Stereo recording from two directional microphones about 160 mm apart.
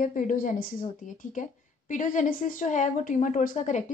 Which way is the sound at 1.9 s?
55° left (ahead or behind).